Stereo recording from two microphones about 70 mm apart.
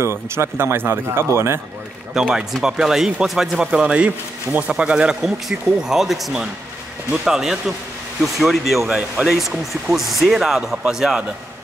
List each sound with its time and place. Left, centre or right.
0.0 s speech: right
2.1 s speech: centre